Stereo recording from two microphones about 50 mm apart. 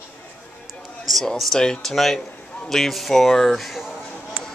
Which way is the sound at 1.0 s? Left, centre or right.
Centre.